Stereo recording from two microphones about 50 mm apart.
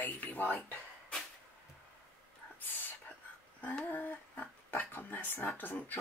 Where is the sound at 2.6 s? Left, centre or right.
Left.